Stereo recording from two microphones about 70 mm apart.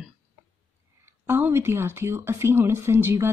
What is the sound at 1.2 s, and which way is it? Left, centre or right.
Speech, right.